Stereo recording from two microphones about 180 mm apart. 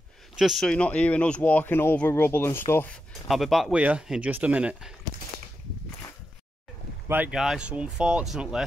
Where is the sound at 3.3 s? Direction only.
Centre (ahead or behind).